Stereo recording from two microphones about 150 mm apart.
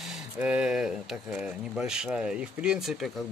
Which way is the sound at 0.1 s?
5° right (ahead or behind).